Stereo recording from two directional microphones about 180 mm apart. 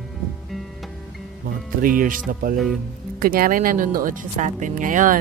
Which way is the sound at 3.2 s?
50° right (ahead or behind).